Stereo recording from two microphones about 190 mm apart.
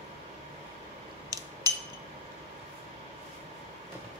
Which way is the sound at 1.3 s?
20° right (ahead or behind).